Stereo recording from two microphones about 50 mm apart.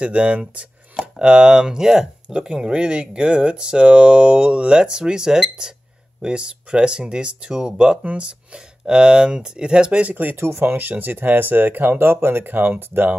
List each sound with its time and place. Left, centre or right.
0.0 s speech: right
10.1 s speech: right